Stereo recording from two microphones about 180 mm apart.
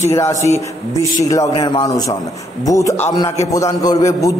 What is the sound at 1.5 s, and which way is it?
A man's voice, 25° left (ahead or behind).